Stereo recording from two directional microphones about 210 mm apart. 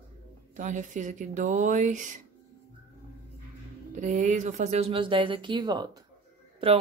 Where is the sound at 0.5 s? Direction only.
35° right (ahead or behind).